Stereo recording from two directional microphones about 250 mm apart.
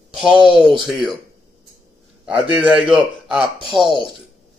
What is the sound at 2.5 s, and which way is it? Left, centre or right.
Speech, centre.